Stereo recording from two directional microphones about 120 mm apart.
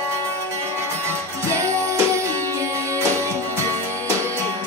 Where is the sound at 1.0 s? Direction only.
25° right (ahead or behind).